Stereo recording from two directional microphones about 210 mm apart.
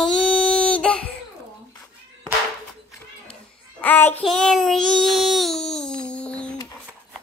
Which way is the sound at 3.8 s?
10° left (ahead or behind).